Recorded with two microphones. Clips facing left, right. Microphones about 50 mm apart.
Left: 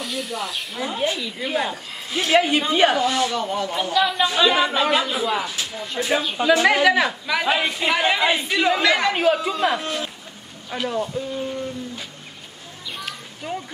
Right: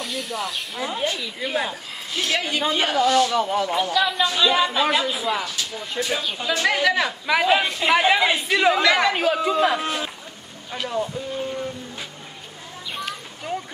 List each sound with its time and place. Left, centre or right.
0.0 s speech: centre
2.1 s a woman's voice: centre
2.7 s speech: centre
5.9 s speech: centre
9.8 s speech: centre
10.7 s speech: centre
13.0 s a sound: centre